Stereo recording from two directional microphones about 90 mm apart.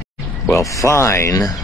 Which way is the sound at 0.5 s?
35° left (ahead or behind).